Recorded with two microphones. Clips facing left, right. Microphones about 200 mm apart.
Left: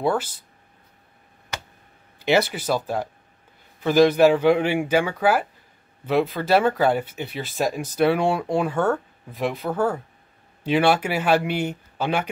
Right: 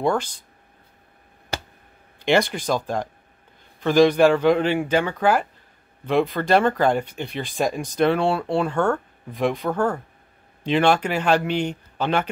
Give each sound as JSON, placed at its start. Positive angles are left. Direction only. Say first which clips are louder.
{"t": 0.0, "sound": "speech", "louder": "right 1 dB", "side_deg": 5}
{"t": 1.5, "sound": "a sound", "louder": "right 4 dB", "side_deg": -35}
{"t": 2.2, "sound": "speech", "louder": "even", "side_deg": 5}